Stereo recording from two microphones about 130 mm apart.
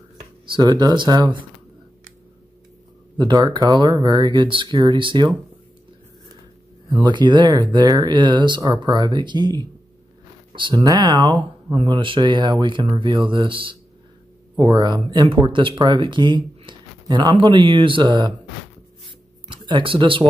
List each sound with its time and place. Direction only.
0.5 s speech: 35° right (ahead or behind)
3.2 s speech: 35° right (ahead or behind)
7.1 s speech: 35° right (ahead or behind)
19.0 s a sound: 40° right (ahead or behind)